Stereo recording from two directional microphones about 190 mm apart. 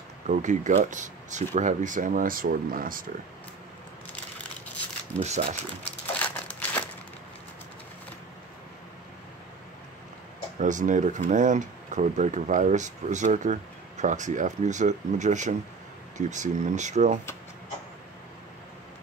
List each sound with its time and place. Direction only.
0.3 s speech: 40° right (ahead or behind)
5.2 s speech: 35° right (ahead or behind)
6.1 s crumpling: 10° left (ahead or behind)
10.6 s speech: 40° right (ahead or behind)